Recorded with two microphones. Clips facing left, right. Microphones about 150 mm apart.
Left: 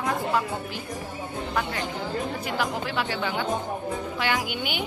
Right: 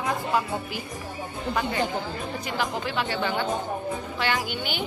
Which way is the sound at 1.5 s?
5° right (ahead or behind).